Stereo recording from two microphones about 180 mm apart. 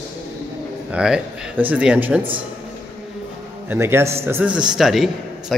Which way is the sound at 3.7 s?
15° right (ahead or behind).